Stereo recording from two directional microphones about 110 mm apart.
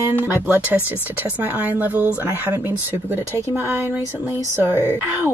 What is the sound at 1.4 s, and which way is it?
Speech, 15° right (ahead or behind).